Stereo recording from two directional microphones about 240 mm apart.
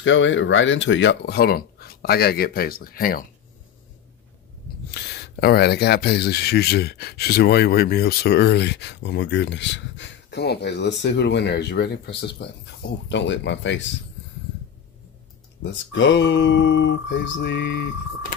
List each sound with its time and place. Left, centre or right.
0.0 s speech: left
4.9 s speech: left
15.6 s speech: left